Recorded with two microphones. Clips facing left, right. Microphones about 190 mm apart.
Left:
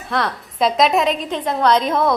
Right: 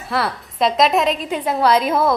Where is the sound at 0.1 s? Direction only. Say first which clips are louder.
Even; centre (ahead or behind).